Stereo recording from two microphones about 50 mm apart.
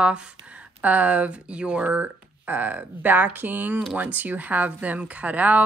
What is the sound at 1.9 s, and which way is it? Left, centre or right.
Speech, right.